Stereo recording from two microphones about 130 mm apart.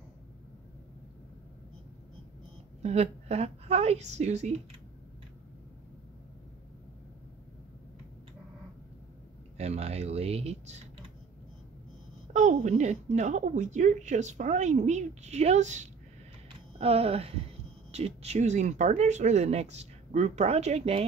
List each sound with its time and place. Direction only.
2.8 s speech: 55° right (ahead or behind)
9.6 s speech: 55° right (ahead or behind)
12.3 s speech: 65° right (ahead or behind)
16.7 s speech: 50° right (ahead or behind)